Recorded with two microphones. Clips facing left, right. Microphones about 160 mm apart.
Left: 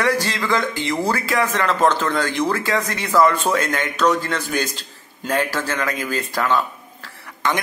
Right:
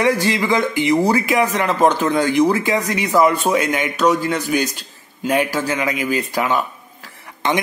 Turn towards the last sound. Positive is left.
turn(degrees=-15)  # may be behind; listen again after turning